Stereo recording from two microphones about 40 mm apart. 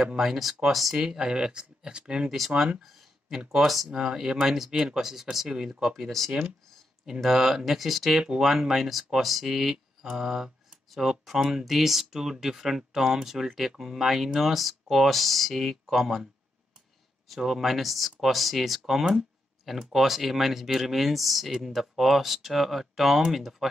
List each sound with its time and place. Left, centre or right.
0.0 s speech: centre
0.9 s speech: centre
2.8 s speech: centre
3.9 s speech: centre
6.0 s speech: centre
7.2 s speech: centre
17.3 s speech: centre